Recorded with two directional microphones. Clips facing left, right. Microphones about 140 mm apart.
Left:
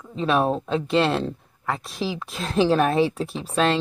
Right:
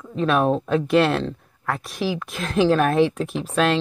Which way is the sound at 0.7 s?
15° left (ahead or behind).